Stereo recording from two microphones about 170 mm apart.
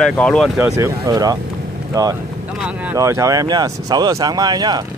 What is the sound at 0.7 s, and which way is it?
Speech, 20° right (ahead or behind).